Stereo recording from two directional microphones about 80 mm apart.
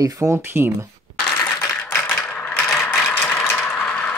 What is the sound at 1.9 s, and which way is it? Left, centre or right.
Mechanisms, centre.